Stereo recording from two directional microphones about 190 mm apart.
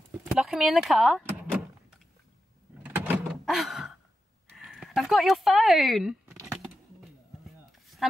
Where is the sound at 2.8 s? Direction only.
10° right (ahead or behind).